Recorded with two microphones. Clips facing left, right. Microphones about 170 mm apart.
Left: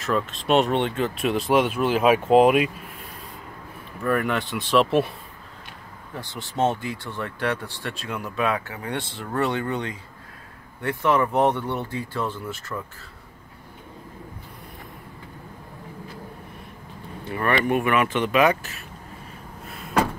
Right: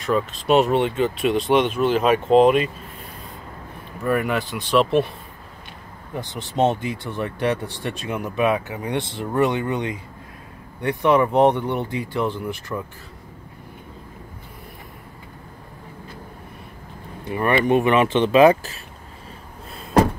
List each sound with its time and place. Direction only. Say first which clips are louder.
0.0 s speech: right 3 dB; centre (ahead or behind)
4.1 s speech: right 2 dB; centre (ahead or behind)
6.1 s speech: right 4 dB; 20° right (ahead or behind)
17.3 s speech: right 4 dB; 20° right (ahead or behind)